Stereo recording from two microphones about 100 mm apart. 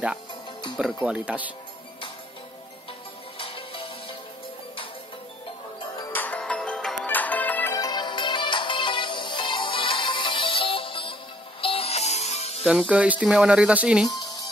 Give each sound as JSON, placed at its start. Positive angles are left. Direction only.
{"t": 1.0, "sound": "speech", "side_deg": -10}
{"t": 3.3, "sound": "music", "side_deg": 65}
{"t": 6.1, "sound": "music", "side_deg": 15}
{"t": 7.7, "sound": "music", "side_deg": 40}
{"t": 11.6, "sound": "music", "side_deg": 75}
{"t": 12.9, "sound": "speech", "side_deg": -10}